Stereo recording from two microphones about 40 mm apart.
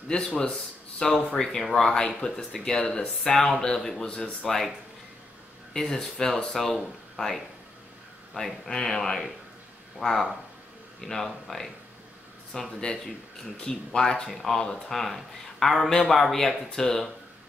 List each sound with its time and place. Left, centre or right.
0.4 s speech: centre
5.7 s speech: centre
9.9 s speech: centre